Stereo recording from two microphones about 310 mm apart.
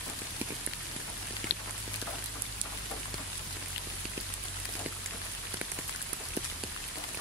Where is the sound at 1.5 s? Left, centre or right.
Left.